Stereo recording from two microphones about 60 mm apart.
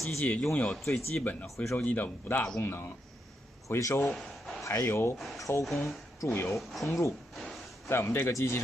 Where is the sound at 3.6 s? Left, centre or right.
Left.